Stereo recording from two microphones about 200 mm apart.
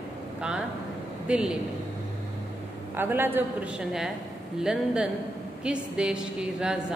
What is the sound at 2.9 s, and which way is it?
A woman's voice, 10° right (ahead or behind).